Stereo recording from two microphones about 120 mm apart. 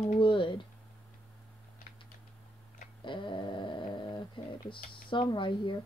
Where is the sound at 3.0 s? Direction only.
45° left (ahead or behind).